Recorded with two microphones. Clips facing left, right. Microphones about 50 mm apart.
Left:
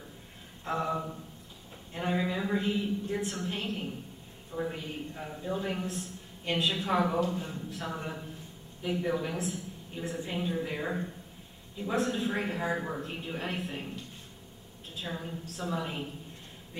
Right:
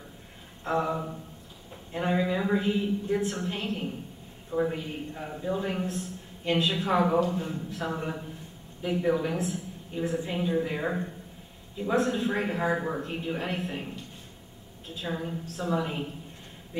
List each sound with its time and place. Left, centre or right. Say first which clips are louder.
0.7 s a man's voice: right 3 dB; centre
4.7 s a man's voice: right 3 dB; centre
15.0 s a man's voice: right 5 dB; centre